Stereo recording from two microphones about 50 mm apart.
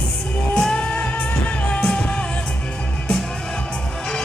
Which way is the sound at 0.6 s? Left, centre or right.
Centre.